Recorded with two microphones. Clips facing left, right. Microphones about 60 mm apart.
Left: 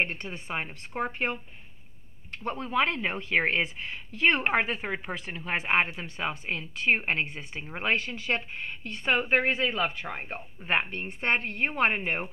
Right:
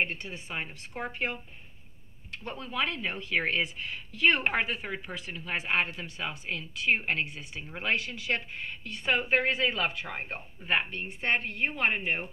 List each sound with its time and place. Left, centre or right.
0.0 s speech: left
9.9 s speech: left
10.7 s speech: left